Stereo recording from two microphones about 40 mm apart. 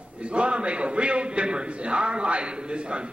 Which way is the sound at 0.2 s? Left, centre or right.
Right.